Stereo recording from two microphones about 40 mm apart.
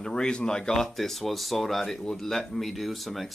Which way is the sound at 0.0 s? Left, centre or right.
Left.